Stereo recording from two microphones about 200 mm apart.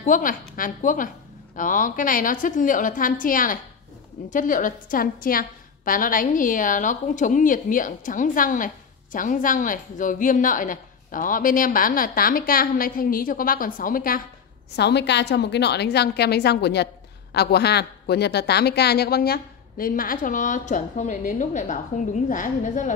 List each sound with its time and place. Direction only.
0.0 s a woman's voice: 40° left (ahead or behind)
14.8 s a woman's voice: 60° left (ahead or behind); by 22.9 s 40° left (ahead or behind)